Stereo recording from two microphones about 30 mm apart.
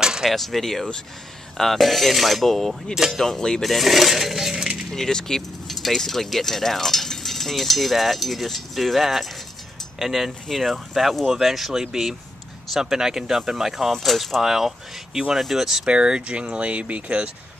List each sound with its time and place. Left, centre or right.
0.0 s a sound: right
0.3 s speech: centre
1.6 s cutlery: centre
2.4 s speech: centre
3.3 s speech: left
3.6 s speech: centre
4.9 s speech: centre
5.7 s keys jangling: centre
5.9 s speech: centre
10.5 s cutlery: centre
11.7 s speech: centre
13.9 s cutlery: centre
14.4 s speech: centre
15.8 s speech: right